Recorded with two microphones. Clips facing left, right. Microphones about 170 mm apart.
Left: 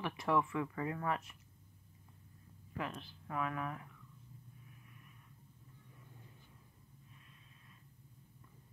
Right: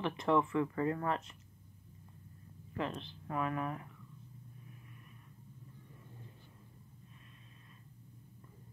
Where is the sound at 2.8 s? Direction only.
25° right (ahead or behind).